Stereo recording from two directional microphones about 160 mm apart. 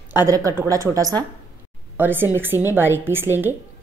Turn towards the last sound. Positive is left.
turn(degrees=-15)  # may be behind; listen again after turning